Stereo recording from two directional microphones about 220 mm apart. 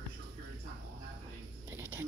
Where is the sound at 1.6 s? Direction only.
10° right (ahead or behind).